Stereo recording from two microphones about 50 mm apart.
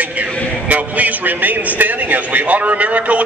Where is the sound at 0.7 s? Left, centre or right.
Right.